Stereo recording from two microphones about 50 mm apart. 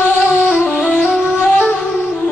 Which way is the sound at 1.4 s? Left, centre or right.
Left.